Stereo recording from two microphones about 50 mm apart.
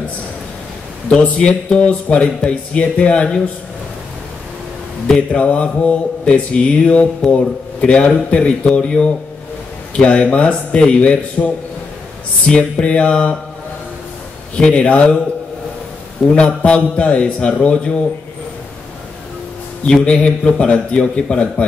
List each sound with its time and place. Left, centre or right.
1.2 s speech: left
5.3 s speech: left
14.5 s speech: left
16.3 s speech: left
19.9 s speech: left